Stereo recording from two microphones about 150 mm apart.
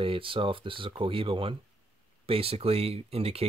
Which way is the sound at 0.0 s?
35° right (ahead or behind).